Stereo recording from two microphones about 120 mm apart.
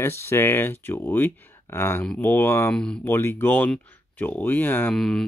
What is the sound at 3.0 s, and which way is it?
Speech, 20° left (ahead or behind).